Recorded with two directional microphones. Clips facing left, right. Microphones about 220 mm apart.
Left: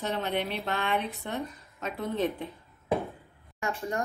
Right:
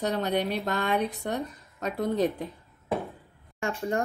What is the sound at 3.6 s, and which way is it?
Speech, 30° right (ahead or behind).